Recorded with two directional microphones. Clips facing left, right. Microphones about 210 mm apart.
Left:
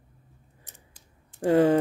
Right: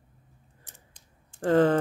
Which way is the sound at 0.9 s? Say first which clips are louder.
Left 3 dB; 10° left (ahead or behind).